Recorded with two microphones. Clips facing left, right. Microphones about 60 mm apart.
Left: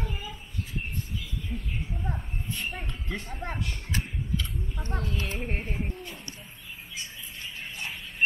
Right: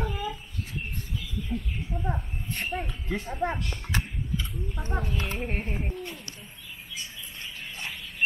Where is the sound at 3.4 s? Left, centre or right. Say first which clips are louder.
Right 9 dB; right.